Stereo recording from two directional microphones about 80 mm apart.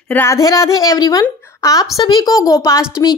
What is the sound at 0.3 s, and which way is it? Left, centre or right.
Speech, left.